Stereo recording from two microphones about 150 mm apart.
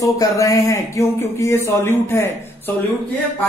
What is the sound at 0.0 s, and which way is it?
Speech, 20° left (ahead or behind).